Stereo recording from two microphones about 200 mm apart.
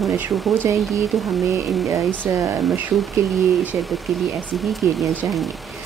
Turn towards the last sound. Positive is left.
turn(degrees=0)  # may be behind; listen again after turning